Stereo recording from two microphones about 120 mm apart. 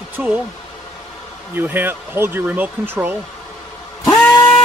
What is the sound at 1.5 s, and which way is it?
Speech, 15° right (ahead or behind).